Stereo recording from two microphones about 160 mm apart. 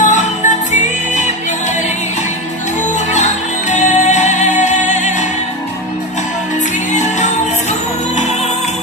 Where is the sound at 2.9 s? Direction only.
50° left (ahead or behind).